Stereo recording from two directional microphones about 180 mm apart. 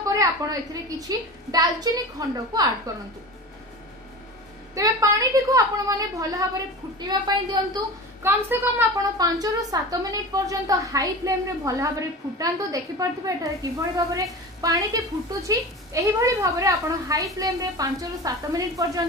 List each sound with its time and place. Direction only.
0.0 s a woman's voice: 20° right (ahead or behind)
4.7 s a woman's voice: 20° right (ahead or behind)